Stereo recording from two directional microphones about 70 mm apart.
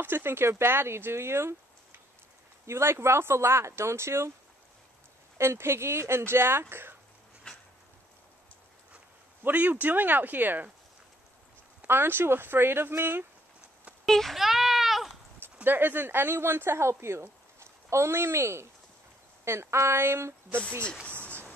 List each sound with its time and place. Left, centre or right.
0.0 s speech: right
5.4 s speech: right
7.5 s a sound: centre
9.4 s speech: right
11.8 s speech: right
14.0 s sheep: centre
15.6 s speech: right
21.0 s a sound: centre